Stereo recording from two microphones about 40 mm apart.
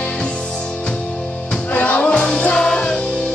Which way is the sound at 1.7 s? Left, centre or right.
Left.